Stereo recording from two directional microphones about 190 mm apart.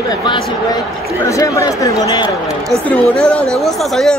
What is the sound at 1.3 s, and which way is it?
Speech, 15° left (ahead or behind).